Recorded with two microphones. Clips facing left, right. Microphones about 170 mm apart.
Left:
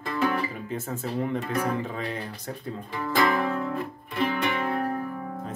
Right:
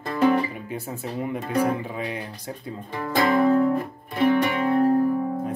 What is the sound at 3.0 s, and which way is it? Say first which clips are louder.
Music: right 4 dB; 40° right (ahead or behind).